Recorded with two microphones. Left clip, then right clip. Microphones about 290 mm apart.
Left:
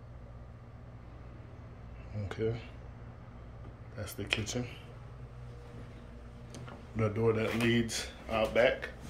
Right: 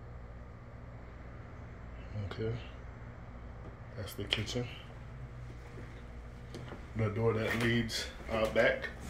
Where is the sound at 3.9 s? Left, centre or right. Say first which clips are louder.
Left 1 dB; centre.